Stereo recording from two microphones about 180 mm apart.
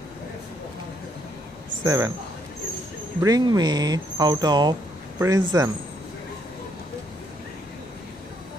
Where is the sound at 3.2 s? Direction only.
20° right (ahead or behind).